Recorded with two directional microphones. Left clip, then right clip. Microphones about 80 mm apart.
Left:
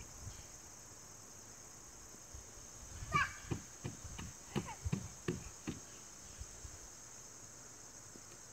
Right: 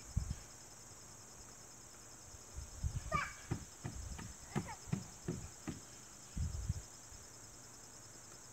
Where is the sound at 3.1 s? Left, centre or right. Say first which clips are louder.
Left 4 dB; centre.